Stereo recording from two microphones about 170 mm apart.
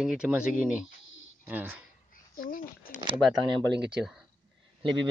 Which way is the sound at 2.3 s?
55° left (ahead or behind).